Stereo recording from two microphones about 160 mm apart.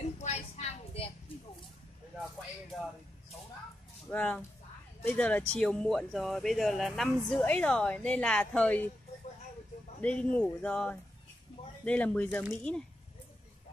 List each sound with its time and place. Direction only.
0.2 s a sound: 45° left (ahead or behind)
4.1 s a woman's voice: 10° left (ahead or behind)
10.0 s a woman's voice: 5° left (ahead or behind)